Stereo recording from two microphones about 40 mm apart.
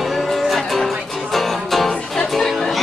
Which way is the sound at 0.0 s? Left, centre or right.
Centre.